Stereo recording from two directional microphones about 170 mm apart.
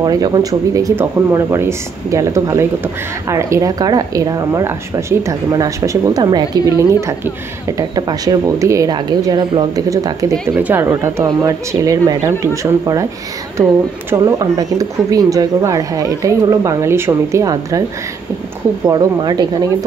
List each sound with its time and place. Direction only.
0.0 s speech: 20° right (ahead or behind)
14.1 s speech: 20° right (ahead or behind)
18.9 s speech: 20° right (ahead or behind)